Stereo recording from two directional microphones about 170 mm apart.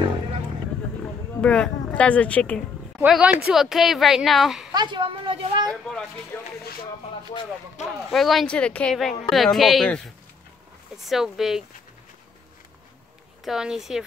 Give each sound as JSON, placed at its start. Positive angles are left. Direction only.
{"t": 1.4, "sound": "speech", "side_deg": 5}
{"t": 3.0, "sound": "speech", "side_deg": -5}
{"t": 4.7, "sound": "a sound", "side_deg": -30}
{"t": 5.7, "sound": "speech", "side_deg": 5}
{"t": 8.1, "sound": "speech", "side_deg": 0}
{"t": 13.4, "sound": "speech", "side_deg": 0}